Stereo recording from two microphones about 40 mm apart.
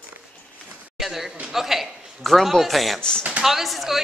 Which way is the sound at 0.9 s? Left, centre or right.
Centre.